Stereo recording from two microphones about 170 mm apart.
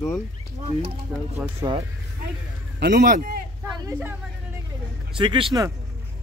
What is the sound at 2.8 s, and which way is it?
Speech, 65° right (ahead or behind).